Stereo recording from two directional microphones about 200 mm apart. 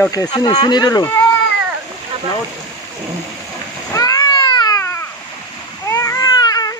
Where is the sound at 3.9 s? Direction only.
20° left (ahead or behind).